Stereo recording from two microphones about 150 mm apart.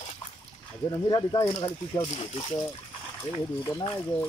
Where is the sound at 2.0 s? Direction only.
40° left (ahead or behind).